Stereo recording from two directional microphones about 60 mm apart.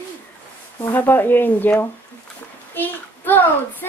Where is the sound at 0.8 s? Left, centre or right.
Left.